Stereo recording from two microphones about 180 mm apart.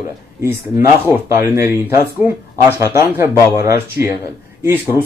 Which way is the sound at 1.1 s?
15° right (ahead or behind).